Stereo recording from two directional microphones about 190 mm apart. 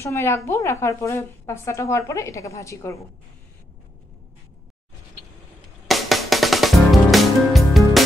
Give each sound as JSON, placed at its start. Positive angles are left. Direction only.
{"t": 0.0, "sound": "a woman's voice", "side_deg": 15}
{"t": 5.9, "sound": "music", "side_deg": 0}